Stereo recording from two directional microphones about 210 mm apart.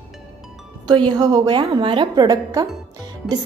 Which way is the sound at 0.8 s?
20° right (ahead or behind).